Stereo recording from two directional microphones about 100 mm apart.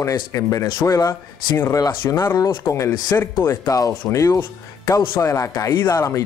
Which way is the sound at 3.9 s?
25° left (ahead or behind).